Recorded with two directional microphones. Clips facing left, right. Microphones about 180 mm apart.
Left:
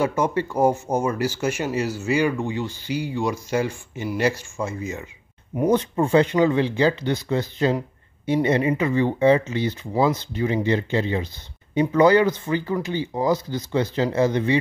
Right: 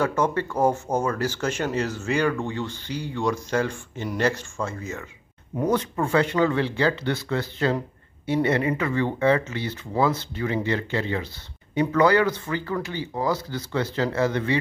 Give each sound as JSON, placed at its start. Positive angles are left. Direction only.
{"t": 0.0, "sound": "speech", "side_deg": 10}